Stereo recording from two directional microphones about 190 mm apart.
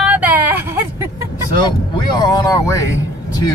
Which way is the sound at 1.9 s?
20° left (ahead or behind).